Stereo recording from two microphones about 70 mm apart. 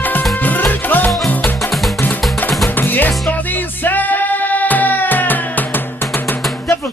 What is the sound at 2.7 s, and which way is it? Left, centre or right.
Music, left.